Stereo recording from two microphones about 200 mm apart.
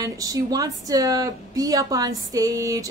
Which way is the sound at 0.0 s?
15° right (ahead or behind).